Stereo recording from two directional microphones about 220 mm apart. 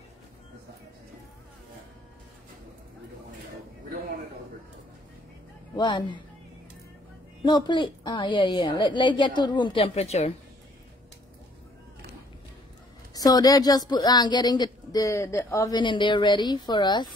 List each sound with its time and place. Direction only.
5.8 s speech: 20° left (ahead or behind)
7.4 s speech: 20° left (ahead or behind)
13.1 s speech: 15° left (ahead or behind)